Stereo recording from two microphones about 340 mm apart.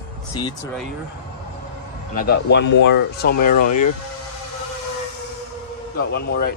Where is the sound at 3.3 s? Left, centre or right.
Left.